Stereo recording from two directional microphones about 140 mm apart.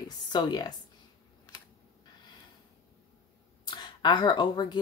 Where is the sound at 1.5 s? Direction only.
30° left (ahead or behind).